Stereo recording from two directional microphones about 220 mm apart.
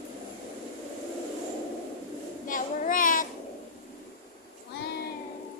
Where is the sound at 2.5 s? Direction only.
40° left (ahead or behind).